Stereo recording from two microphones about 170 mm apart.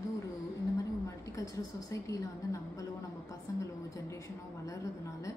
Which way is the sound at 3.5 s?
20° left (ahead or behind).